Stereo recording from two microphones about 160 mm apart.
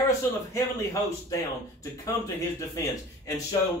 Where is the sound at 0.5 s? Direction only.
15° left (ahead or behind).